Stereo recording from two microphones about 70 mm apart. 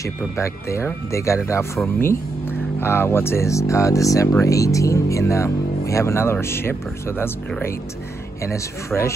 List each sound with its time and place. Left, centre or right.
0.0 s speech: left
8.4 s speech: left